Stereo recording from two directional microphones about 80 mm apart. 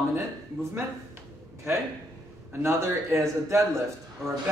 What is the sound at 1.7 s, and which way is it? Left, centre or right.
A man's voice, right.